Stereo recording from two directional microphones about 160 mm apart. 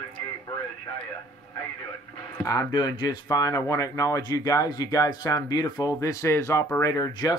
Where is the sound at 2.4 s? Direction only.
20° left (ahead or behind).